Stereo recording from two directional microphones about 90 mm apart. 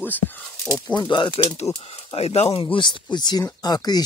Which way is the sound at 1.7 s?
90° left.